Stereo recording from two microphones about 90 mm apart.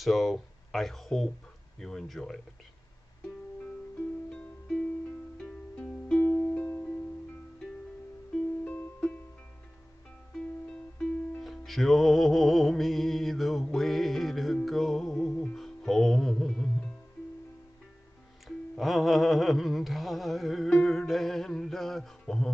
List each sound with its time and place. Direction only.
0.0 s speech: centre (ahead or behind)
4.3 s music: 5° left (ahead or behind)
8.6 s music: 15° left (ahead or behind)
10.3 s music: 10° left (ahead or behind)
18.8 s a sound: centre (ahead or behind)